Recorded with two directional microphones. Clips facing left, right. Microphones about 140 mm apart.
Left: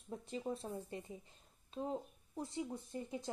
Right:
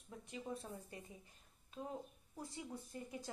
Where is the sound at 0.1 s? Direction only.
30° left (ahead or behind).